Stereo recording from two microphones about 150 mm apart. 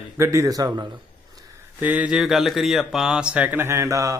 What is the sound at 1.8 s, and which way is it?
A man's voice, 10° right (ahead or behind).